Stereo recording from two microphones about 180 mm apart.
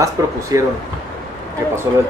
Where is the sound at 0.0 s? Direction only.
15° right (ahead or behind).